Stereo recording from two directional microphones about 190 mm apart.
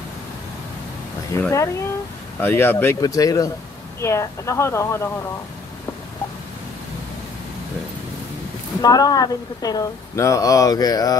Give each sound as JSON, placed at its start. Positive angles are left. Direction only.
{"t": 1.4, "sound": "speech", "side_deg": 15}
{"t": 8.8, "sound": "a woman's voice", "side_deg": 20}